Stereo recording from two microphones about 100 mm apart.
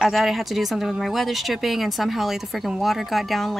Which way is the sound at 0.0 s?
Centre (ahead or behind).